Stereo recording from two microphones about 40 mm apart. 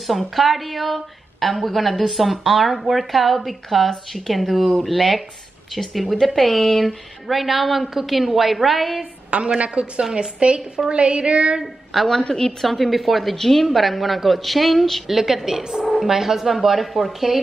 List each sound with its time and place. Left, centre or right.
0.0 s a woman's voice: centre
9.6 s a woman's voice: right
11.6 s a woman's voice: centre
12.2 s a woman's voice: centre
12.6 s a woman's voice: centre
15.0 s a woman's voice: centre